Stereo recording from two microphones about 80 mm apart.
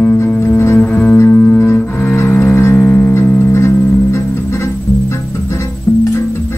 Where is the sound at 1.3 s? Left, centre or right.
Left.